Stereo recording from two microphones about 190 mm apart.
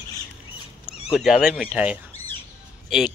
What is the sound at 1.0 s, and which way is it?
Speech, centre (ahead or behind).